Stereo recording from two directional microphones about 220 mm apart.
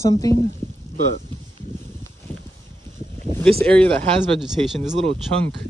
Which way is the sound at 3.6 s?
5° left (ahead or behind).